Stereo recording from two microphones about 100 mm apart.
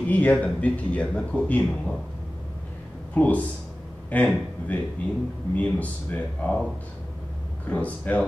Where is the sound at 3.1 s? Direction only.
15° left (ahead or behind).